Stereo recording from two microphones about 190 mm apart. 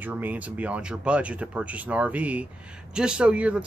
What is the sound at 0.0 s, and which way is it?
Speech, 10° right (ahead or behind).